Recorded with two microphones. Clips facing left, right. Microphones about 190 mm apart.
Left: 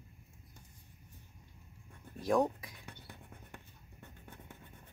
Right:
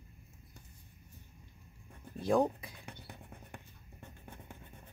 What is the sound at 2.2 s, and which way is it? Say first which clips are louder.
Speech: right 1 dB; 30° right (ahead or behind).